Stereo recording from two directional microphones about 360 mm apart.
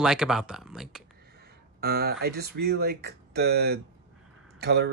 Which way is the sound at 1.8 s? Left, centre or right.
Right.